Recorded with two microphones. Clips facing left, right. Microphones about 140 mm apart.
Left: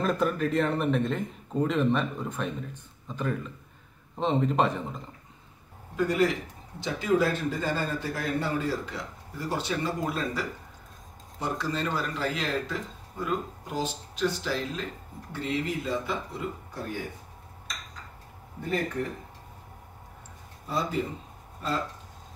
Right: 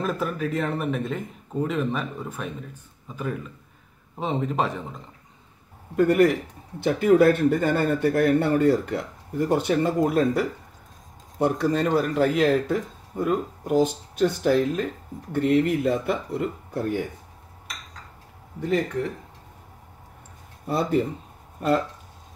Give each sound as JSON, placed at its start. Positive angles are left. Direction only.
{"t": 0.0, "sound": "speech", "side_deg": -5}
{"t": 5.9, "sound": "a man's voice", "side_deg": -55}
{"t": 20.6, "sound": "a man's voice", "side_deg": -60}